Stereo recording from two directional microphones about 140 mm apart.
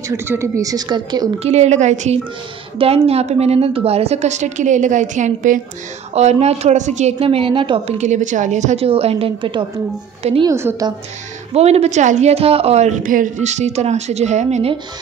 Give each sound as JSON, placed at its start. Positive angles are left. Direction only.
{"t": 0.1, "sound": "speech", "side_deg": -15}
{"t": 1.4, "sound": "a woman's voice", "side_deg": -55}
{"t": 2.8, "sound": "a woman's voice", "side_deg": -45}
{"t": 6.1, "sound": "a woman's voice", "side_deg": -50}
{"t": 8.0, "sound": "a woman's voice", "side_deg": -60}
{"t": 10.4, "sound": "speech", "side_deg": -20}
{"t": 11.5, "sound": "a woman's voice", "side_deg": -50}
{"t": 13.0, "sound": "a woman's voice", "side_deg": -70}